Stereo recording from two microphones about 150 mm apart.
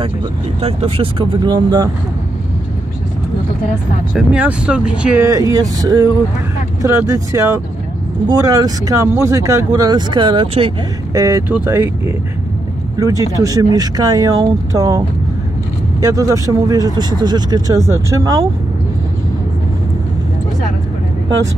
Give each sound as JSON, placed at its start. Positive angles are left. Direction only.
{"t": 0.6, "sound": "speech", "side_deg": -40}
{"t": 4.1, "sound": "speech", "side_deg": -5}
{"t": 5.2, "sound": "speech", "side_deg": -20}
{"t": 11.1, "sound": "speech", "side_deg": -20}
{"t": 13.0, "sound": "speech", "side_deg": -25}